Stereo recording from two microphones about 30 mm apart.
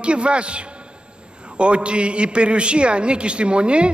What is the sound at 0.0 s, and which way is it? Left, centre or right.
A man's voice, right.